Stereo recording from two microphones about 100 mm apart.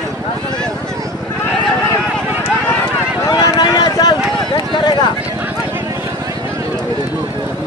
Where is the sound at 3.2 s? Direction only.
40° left (ahead or behind).